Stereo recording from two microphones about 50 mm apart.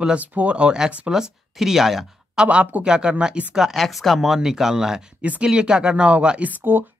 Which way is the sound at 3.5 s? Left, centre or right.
Centre.